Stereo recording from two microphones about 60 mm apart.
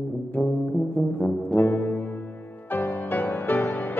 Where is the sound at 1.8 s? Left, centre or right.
Left.